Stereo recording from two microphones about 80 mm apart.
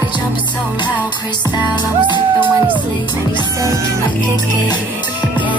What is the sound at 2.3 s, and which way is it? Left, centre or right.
Music, right.